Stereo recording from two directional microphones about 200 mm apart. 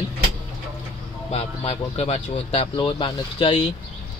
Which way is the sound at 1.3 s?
30° left (ahead or behind).